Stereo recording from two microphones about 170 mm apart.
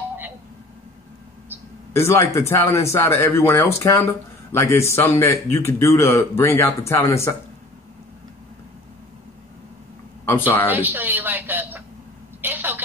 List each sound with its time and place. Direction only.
2.0 s speech: 15° left (ahead or behind)
10.7 s a woman's voice: 10° right (ahead or behind)
12.4 s a sound: 10° right (ahead or behind)